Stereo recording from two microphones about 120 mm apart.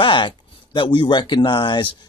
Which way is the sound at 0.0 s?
40° left (ahead or behind).